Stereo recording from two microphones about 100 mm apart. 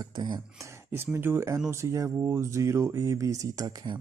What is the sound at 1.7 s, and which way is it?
Speech, 30° right (ahead or behind).